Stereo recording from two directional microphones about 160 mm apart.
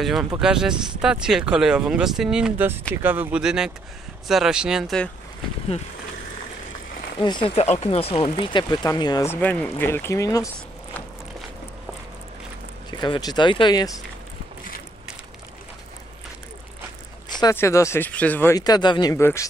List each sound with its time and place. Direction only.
0.0 s speech: centre (ahead or behind)
7.2 s speech: 30° left (ahead or behind)
9.3 s speech: 10° left (ahead or behind)
12.9 s speech: 25° left (ahead or behind)
17.3 s a sound: 25° left (ahead or behind)
17.6 s speech: 20° left (ahead or behind)
18.6 s speech: 25° left (ahead or behind)